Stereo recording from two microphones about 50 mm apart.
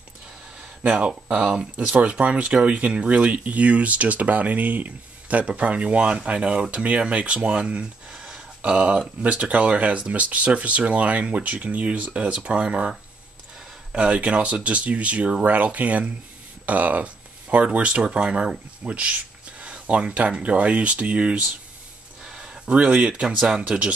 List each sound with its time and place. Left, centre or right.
1.4 s speech: right
13.9 s speech: right
22.2 s a sound: centre
23.7 s speech: right